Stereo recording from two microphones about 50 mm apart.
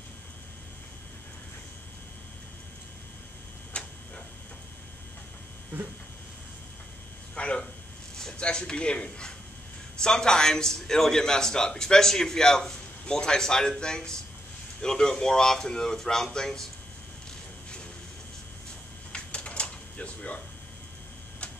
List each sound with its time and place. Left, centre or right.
3.8 s tick-tock: left
7.3 s a sound: left
8.4 s a man's voice: centre
19.1 s typewriter: left